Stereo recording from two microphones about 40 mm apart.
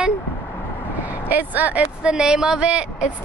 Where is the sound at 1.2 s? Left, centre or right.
Right.